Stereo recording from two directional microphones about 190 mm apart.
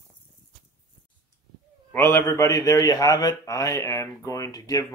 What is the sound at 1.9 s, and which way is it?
A man's voice, 15° left (ahead or behind).